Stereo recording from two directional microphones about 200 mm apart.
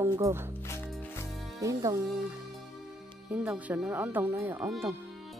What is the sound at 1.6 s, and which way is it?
Speech, 15° right (ahead or behind).